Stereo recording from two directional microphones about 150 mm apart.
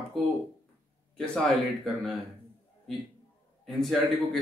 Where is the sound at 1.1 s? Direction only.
5° left (ahead or behind).